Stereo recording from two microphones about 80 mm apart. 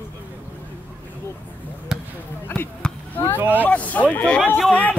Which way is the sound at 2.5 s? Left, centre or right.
Left.